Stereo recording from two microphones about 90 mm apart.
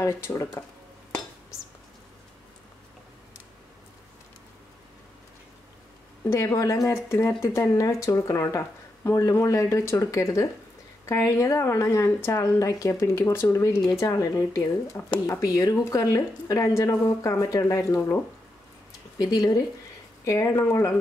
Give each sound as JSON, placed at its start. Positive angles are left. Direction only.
{"t": 0.0, "sound": "speech", "side_deg": 30}
{"t": 6.3, "sound": "speech", "side_deg": 35}
{"t": 19.1, "sound": "speech", "side_deg": 45}
{"t": 20.2, "sound": "speech", "side_deg": 35}